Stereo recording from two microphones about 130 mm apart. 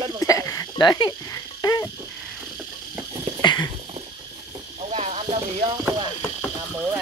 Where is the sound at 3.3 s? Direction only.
30° left (ahead or behind).